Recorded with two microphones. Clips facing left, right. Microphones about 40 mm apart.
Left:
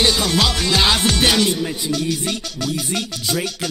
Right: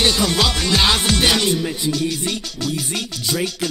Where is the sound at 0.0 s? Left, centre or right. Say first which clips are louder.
Even; centre.